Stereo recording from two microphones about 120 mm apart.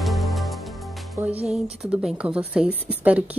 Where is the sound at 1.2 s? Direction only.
15° right (ahead or behind).